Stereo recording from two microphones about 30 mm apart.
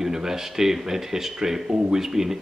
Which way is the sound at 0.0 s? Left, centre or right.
Centre.